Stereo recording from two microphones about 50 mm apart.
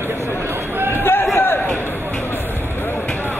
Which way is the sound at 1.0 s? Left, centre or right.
Left.